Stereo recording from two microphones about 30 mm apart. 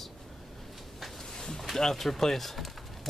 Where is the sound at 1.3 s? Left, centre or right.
Left.